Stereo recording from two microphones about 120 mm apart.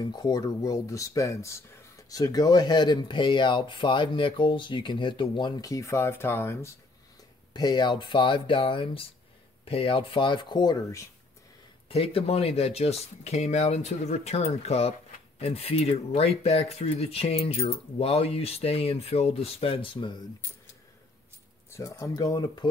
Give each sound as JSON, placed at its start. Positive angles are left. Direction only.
{"t": 0.0, "sound": "speech", "side_deg": 35}
{"t": 5.6, "sound": "speech", "side_deg": 25}
{"t": 7.5, "sound": "speech", "side_deg": 35}
{"t": 11.9, "sound": "speech", "side_deg": 50}
{"t": 21.6, "sound": "speech", "side_deg": 25}